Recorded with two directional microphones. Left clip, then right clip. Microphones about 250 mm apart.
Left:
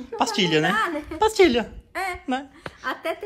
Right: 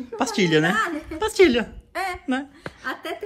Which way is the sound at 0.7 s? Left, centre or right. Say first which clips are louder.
Even; left.